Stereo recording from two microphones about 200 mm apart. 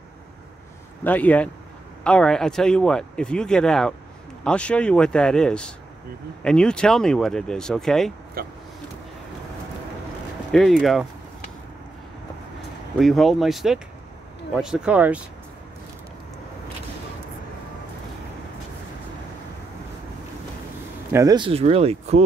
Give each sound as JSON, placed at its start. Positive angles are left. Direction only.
{"t": 1.0, "sound": "speech", "side_deg": 10}
{"t": 8.4, "sound": "speech", "side_deg": -50}
{"t": 10.5, "sound": "speech", "side_deg": 0}
{"t": 13.0, "sound": "speech", "side_deg": 0}
{"t": 21.1, "sound": "speech", "side_deg": -15}